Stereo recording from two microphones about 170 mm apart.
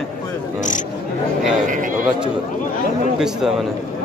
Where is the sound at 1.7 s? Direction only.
50° right (ahead or behind).